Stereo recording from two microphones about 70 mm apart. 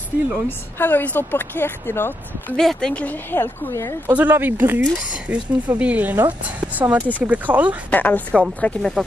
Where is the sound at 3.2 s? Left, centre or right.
Left.